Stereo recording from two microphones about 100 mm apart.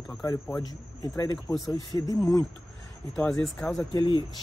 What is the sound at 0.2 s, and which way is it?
Speech, 35° left (ahead or behind).